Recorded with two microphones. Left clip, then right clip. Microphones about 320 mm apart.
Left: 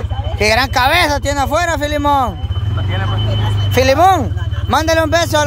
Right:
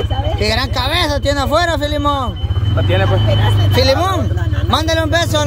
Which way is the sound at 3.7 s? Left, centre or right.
Centre.